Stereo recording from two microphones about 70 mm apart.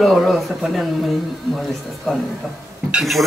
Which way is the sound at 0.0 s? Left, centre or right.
Centre.